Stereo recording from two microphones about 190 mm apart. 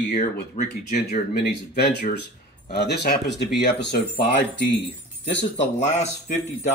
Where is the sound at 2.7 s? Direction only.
60° left (ahead or behind).